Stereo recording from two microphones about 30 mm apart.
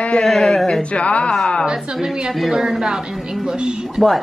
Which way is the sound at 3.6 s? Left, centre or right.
Right.